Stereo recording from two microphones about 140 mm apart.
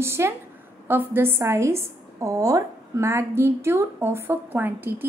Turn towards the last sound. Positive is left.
turn(degrees=-15)  # may be behind; listen again after turning